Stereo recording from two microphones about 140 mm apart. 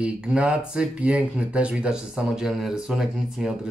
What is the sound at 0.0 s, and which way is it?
Speech, 5° right (ahead or behind).